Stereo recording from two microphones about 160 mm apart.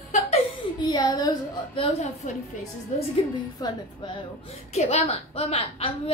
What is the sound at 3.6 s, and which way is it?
Speech, 30° left (ahead or behind).